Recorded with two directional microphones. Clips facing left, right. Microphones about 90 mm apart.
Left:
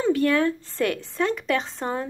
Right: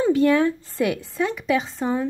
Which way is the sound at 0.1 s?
20° right (ahead or behind).